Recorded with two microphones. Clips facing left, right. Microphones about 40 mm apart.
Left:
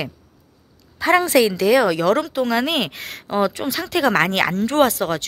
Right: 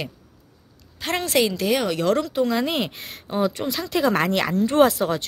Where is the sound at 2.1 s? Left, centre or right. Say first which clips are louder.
Left 2 dB; left.